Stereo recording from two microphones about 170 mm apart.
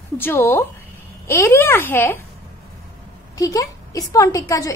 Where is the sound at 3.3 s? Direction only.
20° left (ahead or behind).